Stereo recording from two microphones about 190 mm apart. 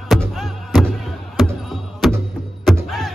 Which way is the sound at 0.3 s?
Centre (ahead or behind).